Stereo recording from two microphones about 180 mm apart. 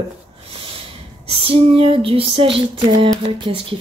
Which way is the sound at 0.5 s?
30° right (ahead or behind).